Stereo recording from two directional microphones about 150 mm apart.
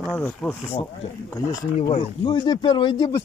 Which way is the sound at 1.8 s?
45° left (ahead or behind).